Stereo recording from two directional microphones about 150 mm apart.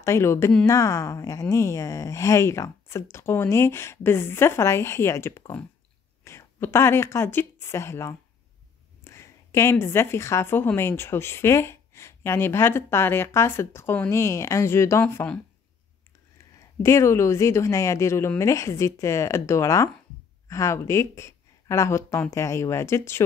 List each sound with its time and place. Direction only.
0.0 s a woman's voice: 20° left (ahead or behind)
16.8 s a woman's voice: 20° left (ahead or behind)